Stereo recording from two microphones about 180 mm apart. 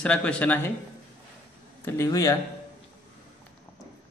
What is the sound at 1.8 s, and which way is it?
Speech, 15° left (ahead or behind).